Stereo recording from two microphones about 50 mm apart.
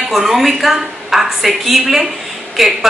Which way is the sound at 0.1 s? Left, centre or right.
Centre.